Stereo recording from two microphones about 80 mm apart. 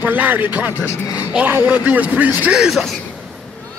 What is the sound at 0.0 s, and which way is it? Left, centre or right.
A man's voice, right.